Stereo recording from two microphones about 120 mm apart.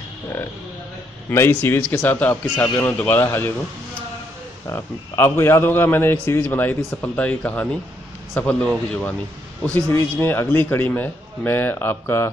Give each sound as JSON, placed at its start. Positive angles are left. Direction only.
{"t": 1.3, "sound": "a man's voice", "side_deg": 20}
{"t": 4.6, "sound": "a man's voice", "side_deg": 20}